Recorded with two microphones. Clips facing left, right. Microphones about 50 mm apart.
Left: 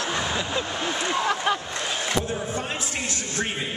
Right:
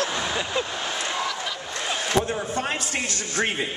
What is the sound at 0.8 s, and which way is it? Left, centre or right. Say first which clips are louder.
Speech: left 3 dB; centre.